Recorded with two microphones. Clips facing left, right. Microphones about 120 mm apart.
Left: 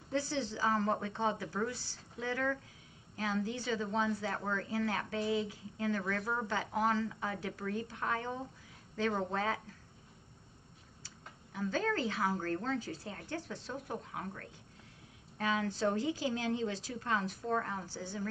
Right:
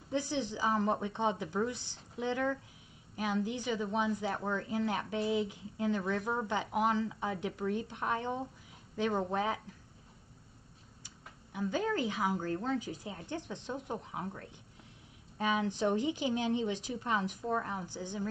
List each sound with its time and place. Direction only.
0.1 s a woman's voice: 15° right (ahead or behind)
11.5 s a woman's voice: 15° right (ahead or behind)